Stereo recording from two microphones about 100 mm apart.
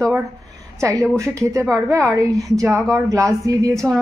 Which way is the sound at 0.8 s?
35° right (ahead or behind).